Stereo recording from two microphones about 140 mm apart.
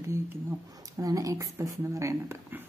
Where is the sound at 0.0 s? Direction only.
20° right (ahead or behind).